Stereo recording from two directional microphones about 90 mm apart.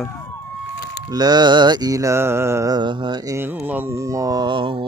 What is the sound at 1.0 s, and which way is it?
Mantra, 50° right (ahead or behind).